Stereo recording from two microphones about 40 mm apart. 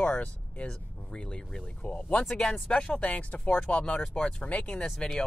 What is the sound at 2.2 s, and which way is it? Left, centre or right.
Speech, left.